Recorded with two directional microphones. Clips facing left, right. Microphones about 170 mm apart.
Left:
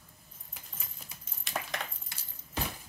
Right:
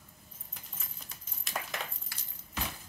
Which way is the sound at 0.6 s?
5° left (ahead or behind).